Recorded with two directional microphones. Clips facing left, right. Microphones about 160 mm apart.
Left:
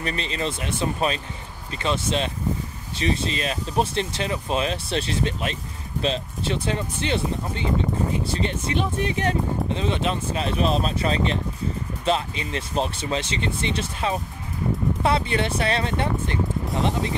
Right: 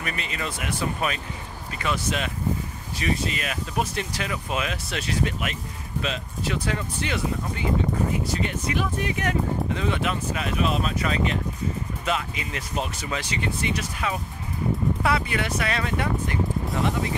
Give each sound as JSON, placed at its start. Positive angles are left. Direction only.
{"t": 0.0, "sound": "speech", "side_deg": 30}